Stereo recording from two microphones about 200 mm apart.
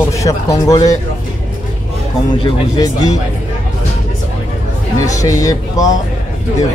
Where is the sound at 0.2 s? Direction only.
15° left (ahead or behind).